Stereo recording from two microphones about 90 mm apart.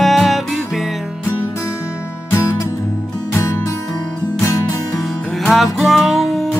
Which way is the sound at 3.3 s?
30° left (ahead or behind).